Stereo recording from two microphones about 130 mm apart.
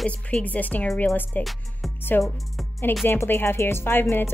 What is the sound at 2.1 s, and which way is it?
Speech, 15° left (ahead or behind).